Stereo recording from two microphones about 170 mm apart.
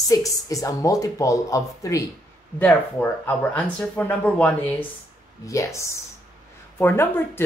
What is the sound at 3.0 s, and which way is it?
Speech, 10° left (ahead or behind).